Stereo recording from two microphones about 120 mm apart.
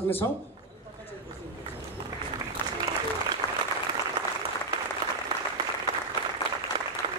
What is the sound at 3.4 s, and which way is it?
Applause, 25° left (ahead or behind).